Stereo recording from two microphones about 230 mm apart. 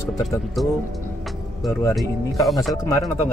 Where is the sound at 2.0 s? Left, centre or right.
Centre.